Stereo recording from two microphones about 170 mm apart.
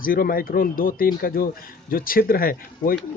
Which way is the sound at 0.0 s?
60° left (ahead or behind).